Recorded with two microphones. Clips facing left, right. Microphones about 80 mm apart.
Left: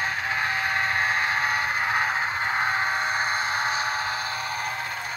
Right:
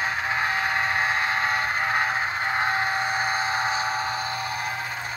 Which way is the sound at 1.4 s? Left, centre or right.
Centre.